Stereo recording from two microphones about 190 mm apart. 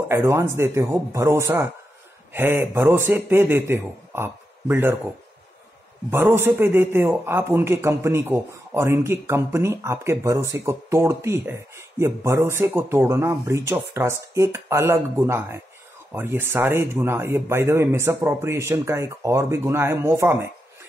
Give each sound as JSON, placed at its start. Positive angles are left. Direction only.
{"t": 0.1, "sound": "speech", "side_deg": -15}
{"t": 6.0, "sound": "speech", "side_deg": -10}